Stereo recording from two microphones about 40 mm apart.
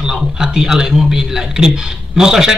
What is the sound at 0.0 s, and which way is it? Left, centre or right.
A man's voice, centre.